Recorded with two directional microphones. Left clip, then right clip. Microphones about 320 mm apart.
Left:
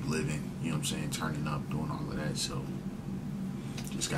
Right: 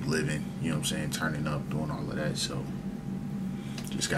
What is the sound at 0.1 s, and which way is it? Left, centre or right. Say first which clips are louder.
Speech: right 5 dB; centre.